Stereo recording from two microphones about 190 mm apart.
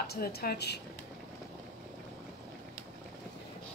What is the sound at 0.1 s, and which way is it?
Speech, 55° left (ahead or behind).